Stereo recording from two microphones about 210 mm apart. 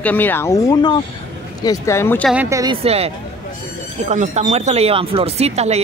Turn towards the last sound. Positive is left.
turn(degrees=-30)  # may be behind; listen again after turning